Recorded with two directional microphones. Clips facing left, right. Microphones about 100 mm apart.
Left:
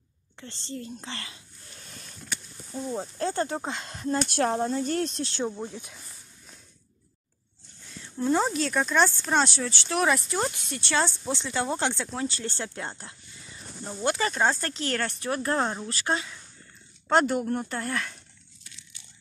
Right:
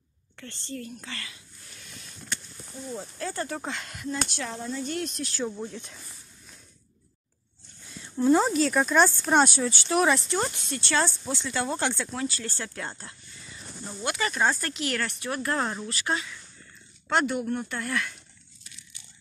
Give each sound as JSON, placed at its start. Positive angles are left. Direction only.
{"t": 0.4, "sound": "whispering", "side_deg": 20}
{"t": 2.9, "sound": "speech", "side_deg": 35}
{"t": 4.3, "sound": "speech", "side_deg": 50}
{"t": 8.2, "sound": "speech", "side_deg": -5}
{"t": 9.9, "sound": "speech", "side_deg": 0}
{"t": 10.6, "sound": "speech", "side_deg": 15}